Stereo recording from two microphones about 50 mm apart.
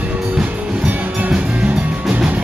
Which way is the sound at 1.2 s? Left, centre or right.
Right.